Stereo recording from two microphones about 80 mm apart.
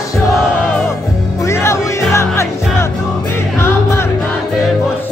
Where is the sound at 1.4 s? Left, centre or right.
Left.